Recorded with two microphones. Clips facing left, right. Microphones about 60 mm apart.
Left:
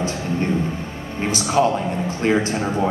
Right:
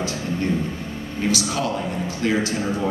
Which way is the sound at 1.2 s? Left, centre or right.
Left.